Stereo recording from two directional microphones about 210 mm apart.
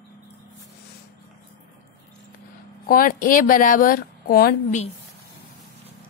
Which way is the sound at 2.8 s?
40° left (ahead or behind).